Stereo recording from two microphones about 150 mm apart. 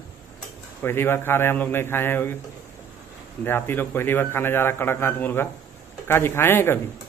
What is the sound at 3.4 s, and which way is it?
A man's voice, 15° left (ahead or behind).